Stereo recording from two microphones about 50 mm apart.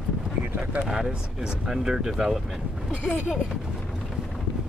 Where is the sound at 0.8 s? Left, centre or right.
Centre.